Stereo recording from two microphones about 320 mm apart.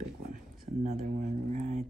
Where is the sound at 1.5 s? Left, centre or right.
Right.